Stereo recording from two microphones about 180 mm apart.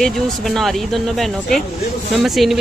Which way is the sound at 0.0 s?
Centre (ahead or behind).